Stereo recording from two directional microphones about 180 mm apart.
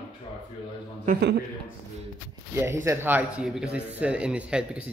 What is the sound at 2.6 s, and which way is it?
Speech, 15° right (ahead or behind).